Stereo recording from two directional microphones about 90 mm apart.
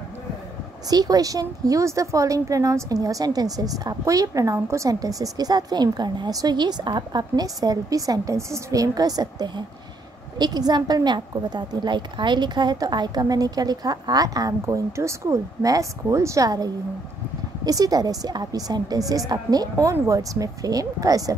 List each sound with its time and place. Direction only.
0.8 s a woman's voice: 45° right (ahead or behind)